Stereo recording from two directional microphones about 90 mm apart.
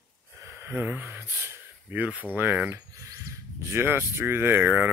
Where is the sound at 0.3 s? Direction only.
30° right (ahead or behind).